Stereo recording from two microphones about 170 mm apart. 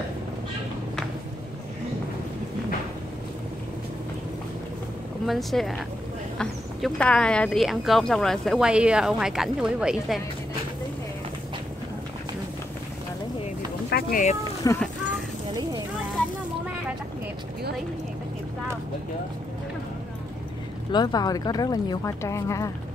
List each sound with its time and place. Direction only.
5.2 s speech: centre (ahead or behind)
13.8 s a sound: 65° left (ahead or behind)
14.7 s speech: 20° left (ahead or behind)
20.9 s speech: 25° left (ahead or behind)